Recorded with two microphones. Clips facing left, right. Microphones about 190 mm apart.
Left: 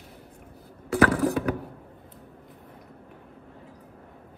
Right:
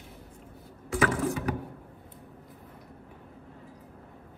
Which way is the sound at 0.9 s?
65° left (ahead or behind).